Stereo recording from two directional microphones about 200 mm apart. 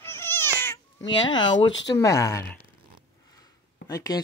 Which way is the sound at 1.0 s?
20° left (ahead or behind).